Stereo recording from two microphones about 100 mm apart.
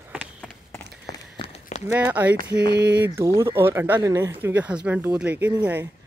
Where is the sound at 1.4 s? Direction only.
90° left.